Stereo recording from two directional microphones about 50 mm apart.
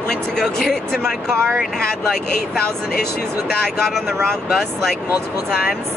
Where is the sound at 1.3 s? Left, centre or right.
Right.